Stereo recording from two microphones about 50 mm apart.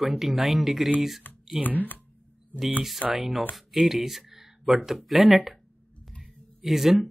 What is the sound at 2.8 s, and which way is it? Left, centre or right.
Speech, centre.